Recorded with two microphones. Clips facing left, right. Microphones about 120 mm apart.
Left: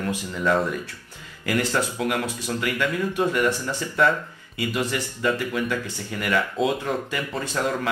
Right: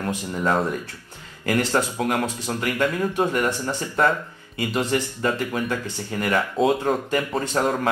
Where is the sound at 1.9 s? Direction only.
45° right (ahead or behind).